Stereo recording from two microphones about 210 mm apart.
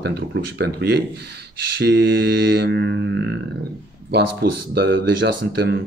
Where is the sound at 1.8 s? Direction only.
50° right (ahead or behind).